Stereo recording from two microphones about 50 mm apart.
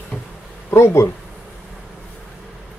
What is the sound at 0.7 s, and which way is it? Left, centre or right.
Speech, left.